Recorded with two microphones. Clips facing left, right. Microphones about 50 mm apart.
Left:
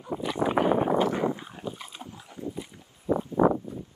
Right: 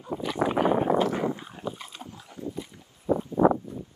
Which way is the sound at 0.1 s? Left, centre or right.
Centre.